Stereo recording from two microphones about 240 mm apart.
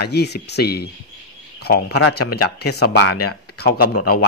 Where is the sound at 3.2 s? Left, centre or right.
Left.